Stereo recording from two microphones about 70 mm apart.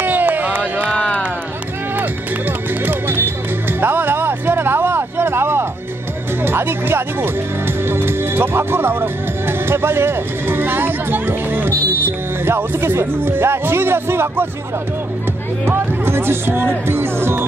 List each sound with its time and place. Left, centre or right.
0.0 s a sound: right
0.8 s music: centre
2.8 s music: right
6.4 s speech: right
15.6 s speech: right